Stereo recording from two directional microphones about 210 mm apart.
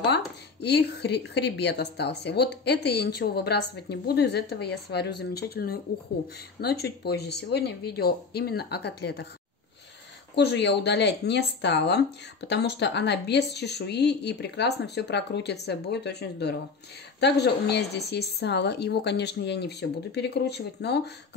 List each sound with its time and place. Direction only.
0.0 s speech: 55° left (ahead or behind)
10.3 s speech: 55° left (ahead or behind)